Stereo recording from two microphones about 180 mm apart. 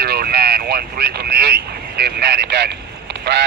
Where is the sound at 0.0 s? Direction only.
60° right (ahead or behind).